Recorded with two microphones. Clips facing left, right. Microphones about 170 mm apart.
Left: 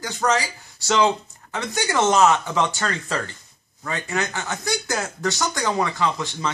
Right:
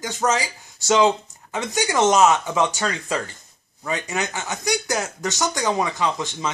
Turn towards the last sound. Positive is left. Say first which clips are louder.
# even
turn(degrees=-15)  # may be behind; listen again after turning